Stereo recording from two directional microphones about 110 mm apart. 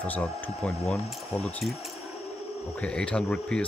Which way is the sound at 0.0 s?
10° left (ahead or behind).